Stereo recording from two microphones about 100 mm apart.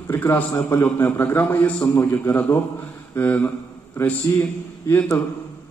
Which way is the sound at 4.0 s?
30° left (ahead or behind).